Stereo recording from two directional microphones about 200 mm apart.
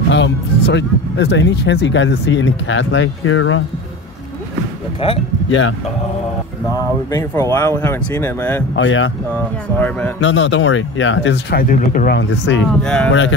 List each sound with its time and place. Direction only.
0.1 s speech: 60° left (ahead or behind); by 3.6 s 85° left
5.0 s speech: 30° left (ahead or behind)
5.5 s speech: 80° left
7.1 s speech: 15° left (ahead or behind)
8.7 s speech: 70° left (ahead or behind)
9.8 s speech: 5° left (ahead or behind)
10.2 s speech: 65° left (ahead or behind)
11.5 s speech: 45° left (ahead or behind)
12.2 s speech: 65° left (ahead or behind)
12.8 s speech: 5° left (ahead or behind)